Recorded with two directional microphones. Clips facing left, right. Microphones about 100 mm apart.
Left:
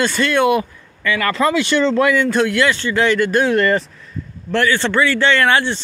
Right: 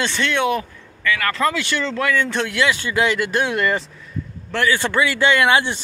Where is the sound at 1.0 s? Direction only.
25° left (ahead or behind).